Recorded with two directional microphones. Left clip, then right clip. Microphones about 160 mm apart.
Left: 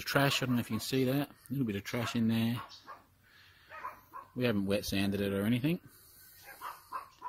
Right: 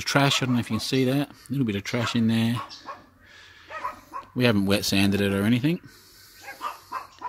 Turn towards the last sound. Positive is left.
turn(degrees=5)  # may be behind; listen again after turning